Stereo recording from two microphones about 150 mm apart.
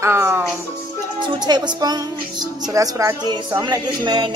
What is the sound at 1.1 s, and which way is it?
Speech, 30° right (ahead or behind).